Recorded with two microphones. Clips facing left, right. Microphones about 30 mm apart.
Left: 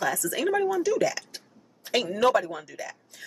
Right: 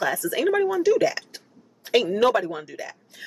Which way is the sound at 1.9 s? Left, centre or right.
Centre.